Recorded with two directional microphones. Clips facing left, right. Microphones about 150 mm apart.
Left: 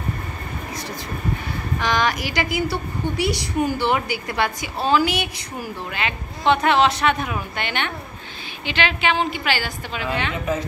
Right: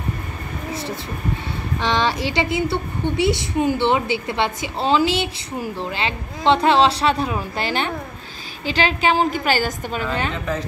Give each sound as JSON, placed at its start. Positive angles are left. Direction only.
{"t": 1.8, "sound": "a woman's voice", "side_deg": -25}